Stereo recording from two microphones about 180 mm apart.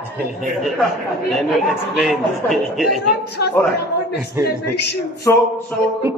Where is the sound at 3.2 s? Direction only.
65° left (ahead or behind).